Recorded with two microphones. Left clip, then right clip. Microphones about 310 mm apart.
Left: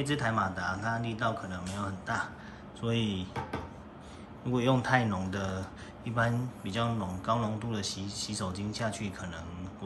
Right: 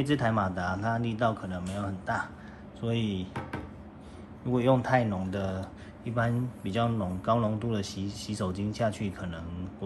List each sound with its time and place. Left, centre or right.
0.0 s speech: centre
4.5 s speech: centre